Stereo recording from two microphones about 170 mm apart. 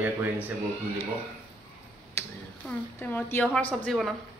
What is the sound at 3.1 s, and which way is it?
Speech, 10° left (ahead or behind).